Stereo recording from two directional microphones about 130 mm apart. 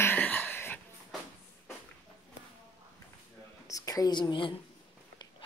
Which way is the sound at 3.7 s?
25° left (ahead or behind).